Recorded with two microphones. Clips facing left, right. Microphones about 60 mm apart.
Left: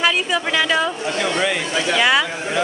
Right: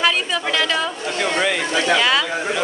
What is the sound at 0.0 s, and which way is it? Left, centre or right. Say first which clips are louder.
Speech: left 1 dB; centre.